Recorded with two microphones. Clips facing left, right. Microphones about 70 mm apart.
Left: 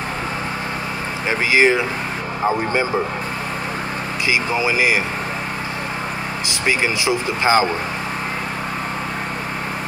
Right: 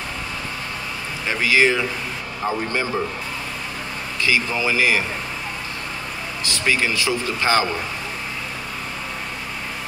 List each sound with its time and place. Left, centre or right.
1.5 s speech: left
4.3 s speech: centre
6.6 s speech: centre